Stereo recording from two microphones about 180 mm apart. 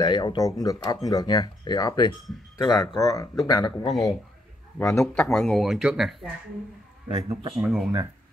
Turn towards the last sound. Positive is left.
turn(degrees=0)  # may be behind; listen again after turning